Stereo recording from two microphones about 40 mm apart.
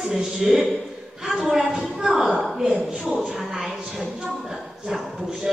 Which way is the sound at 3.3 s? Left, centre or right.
Centre.